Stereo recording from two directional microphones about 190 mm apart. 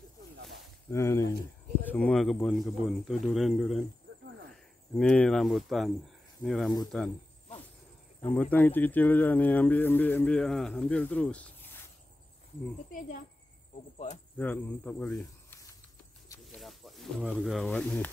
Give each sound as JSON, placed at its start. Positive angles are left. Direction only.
{"t": 0.8, "sound": "speech", "side_deg": 15}
{"t": 4.9, "sound": "speech", "side_deg": 5}
{"t": 8.2, "sound": "speech", "side_deg": 10}
{"t": 13.9, "sound": "cricket", "side_deg": 35}
{"t": 14.4, "sound": "speech", "side_deg": 10}
{"t": 16.5, "sound": "speech", "side_deg": 0}